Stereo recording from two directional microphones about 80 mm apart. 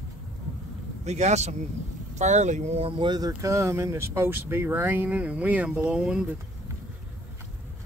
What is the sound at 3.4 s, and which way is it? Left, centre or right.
Speech, right.